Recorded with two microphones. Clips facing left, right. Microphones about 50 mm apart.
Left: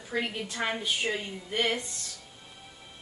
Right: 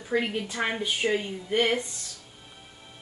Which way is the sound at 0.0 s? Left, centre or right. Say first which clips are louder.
Right 5 dB; centre.